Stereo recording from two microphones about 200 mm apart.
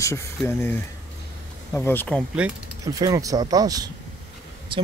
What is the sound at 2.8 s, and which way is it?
Speech, 20° right (ahead or behind).